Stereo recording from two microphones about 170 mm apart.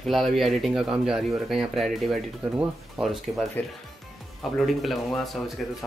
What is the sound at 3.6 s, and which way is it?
Speech, 10° left (ahead or behind).